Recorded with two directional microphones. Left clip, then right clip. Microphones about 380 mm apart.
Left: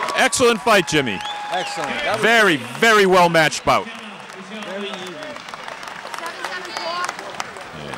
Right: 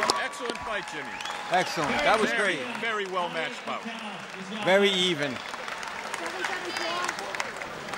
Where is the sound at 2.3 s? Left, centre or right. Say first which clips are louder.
Left 11 dB; left.